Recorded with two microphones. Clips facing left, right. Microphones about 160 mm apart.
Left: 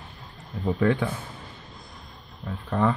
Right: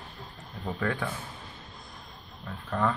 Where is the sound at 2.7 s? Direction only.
30° left (ahead or behind).